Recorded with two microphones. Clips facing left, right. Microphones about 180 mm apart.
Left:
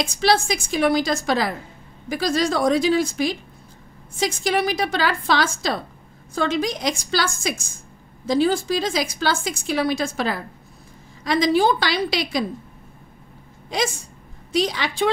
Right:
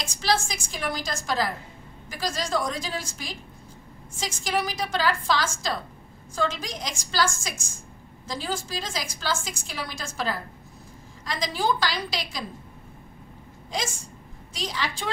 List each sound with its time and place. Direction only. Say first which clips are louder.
0.1 s a woman's voice: left 4 dB; 65° left (ahead or behind)
13.7 s a woman's voice: left 7 dB; 65° left (ahead or behind)